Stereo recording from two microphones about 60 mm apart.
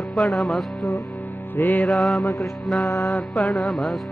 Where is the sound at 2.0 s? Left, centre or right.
Centre.